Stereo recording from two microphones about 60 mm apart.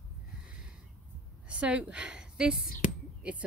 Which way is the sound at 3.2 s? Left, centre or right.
Centre.